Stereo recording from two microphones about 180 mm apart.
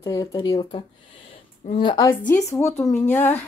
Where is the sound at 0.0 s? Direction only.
20° left (ahead or behind).